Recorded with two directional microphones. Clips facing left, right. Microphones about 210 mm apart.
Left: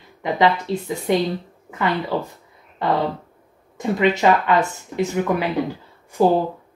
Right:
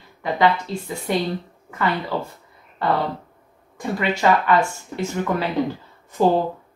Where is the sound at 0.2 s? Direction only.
20° left (ahead or behind).